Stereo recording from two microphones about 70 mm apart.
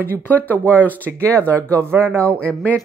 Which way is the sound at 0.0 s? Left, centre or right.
Left.